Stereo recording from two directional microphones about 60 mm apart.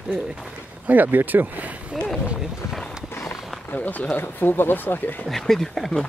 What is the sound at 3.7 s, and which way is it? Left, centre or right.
Speech, left.